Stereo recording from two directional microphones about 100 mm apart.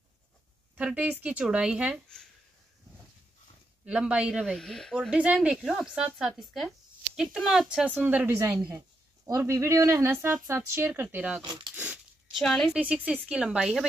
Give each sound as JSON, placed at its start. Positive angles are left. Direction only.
{"t": 0.7, "sound": "speech", "side_deg": -15}
{"t": 3.8, "sound": "speech", "side_deg": -10}
{"t": 4.5, "sound": "speech", "side_deg": 5}
{"t": 5.1, "sound": "speech", "side_deg": -10}
{"t": 8.7, "sound": "speech", "side_deg": -30}
{"t": 11.7, "sound": "a sound", "side_deg": -15}
{"t": 12.3, "sound": "a woman's voice", "side_deg": 5}
{"t": 12.7, "sound": "speech", "side_deg": -10}